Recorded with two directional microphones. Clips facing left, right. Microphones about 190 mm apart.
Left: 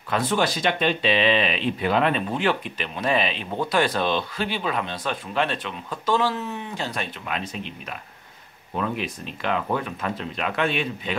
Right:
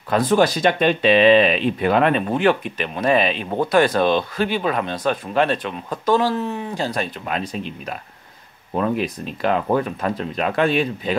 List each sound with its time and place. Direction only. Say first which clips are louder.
0.1 s speech: right 6 dB; 40° right (ahead or behind)